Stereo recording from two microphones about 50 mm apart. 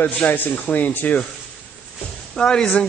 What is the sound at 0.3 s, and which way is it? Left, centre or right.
Speech, left.